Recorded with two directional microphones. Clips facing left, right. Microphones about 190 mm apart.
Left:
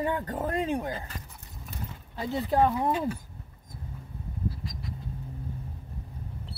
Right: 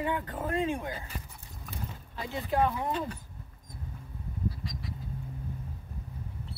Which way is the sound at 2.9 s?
10° left (ahead or behind).